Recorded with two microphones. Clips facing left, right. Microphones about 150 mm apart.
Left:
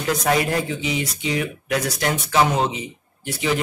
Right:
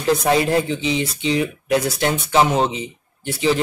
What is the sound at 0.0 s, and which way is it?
Speech, 30° right (ahead or behind).